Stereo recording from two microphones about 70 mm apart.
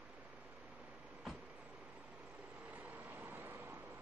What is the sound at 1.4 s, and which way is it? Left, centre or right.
Vehicle, centre.